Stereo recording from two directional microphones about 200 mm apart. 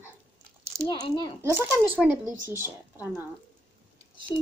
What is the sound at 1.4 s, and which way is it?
Speech, 10° right (ahead or behind).